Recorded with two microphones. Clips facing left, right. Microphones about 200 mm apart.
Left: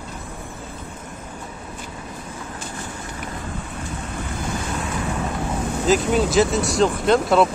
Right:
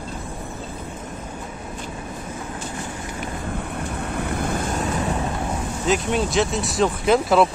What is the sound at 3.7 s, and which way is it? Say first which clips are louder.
Vehicle: right 3 dB; 60° right (ahead or behind).